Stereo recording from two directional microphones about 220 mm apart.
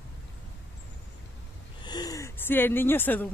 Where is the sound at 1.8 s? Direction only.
20° left (ahead or behind).